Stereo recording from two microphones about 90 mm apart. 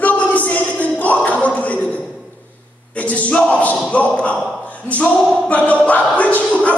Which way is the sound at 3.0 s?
15° left (ahead or behind).